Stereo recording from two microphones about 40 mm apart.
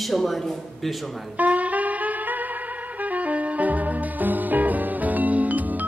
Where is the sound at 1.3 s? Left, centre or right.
Right.